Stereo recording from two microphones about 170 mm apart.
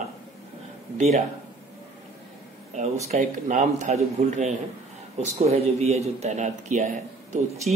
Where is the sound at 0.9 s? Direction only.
40° right (ahead or behind).